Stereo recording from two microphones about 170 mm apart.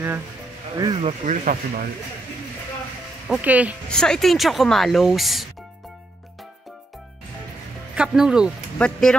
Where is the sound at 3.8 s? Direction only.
5° left (ahead or behind).